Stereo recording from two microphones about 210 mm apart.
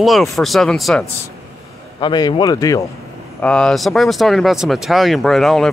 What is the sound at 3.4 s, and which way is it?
Speech, 5° left (ahead or behind).